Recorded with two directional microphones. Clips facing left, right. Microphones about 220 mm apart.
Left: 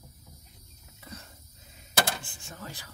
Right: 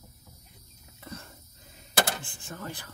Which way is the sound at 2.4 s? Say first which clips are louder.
Right 4 dB; 55° right (ahead or behind).